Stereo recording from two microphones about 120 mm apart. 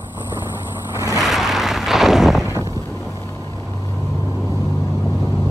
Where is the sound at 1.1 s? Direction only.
5° right (ahead or behind).